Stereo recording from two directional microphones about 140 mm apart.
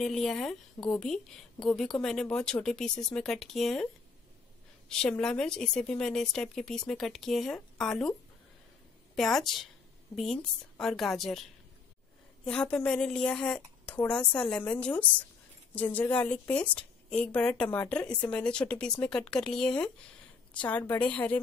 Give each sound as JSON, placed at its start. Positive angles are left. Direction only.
{"t": 0.0, "sound": "a woman's voice", "side_deg": 5}
{"t": 9.1, "sound": "a woman's voice", "side_deg": 0}
{"t": 12.4, "sound": "a woman's voice", "side_deg": 10}